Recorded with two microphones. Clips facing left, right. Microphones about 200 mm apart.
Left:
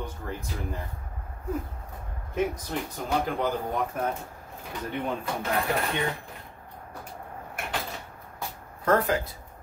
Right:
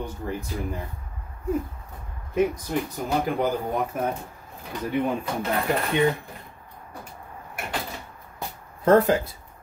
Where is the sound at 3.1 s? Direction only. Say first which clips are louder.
Right 2 dB; 10° right (ahead or behind).